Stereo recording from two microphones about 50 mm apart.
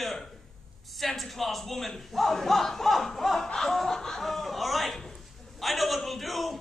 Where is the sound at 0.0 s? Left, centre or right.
Centre.